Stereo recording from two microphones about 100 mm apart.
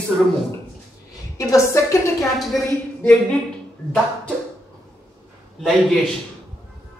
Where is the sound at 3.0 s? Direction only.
15° left (ahead or behind).